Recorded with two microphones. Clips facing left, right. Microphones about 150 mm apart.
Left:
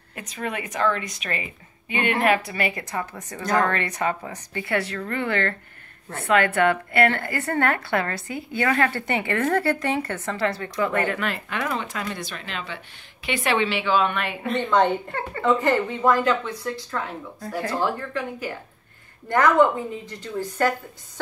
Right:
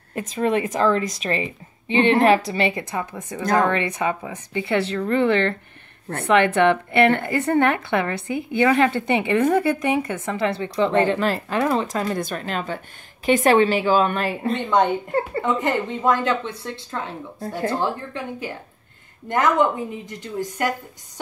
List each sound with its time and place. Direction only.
0.1 s a woman's voice: 35° right (ahead or behind)
14.5 s a woman's voice: 20° right (ahead or behind)